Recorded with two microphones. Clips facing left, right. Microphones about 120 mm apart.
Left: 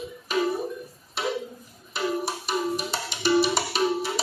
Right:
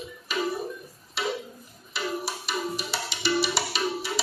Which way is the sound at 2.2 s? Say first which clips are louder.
Left 4 dB; 45° left (ahead or behind).